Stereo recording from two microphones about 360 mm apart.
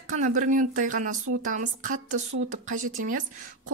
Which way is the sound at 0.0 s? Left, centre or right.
Right.